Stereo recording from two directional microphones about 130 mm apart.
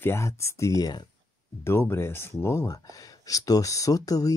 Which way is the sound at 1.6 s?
20° left (ahead or behind).